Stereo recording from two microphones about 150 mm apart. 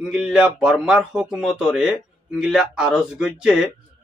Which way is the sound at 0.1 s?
5° right (ahead or behind).